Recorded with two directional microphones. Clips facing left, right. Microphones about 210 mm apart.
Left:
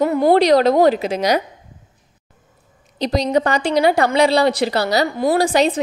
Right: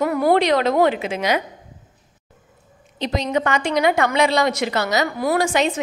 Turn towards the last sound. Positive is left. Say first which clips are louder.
# left 3 dB
turn(degrees=35)  # may be behind; listen again after turning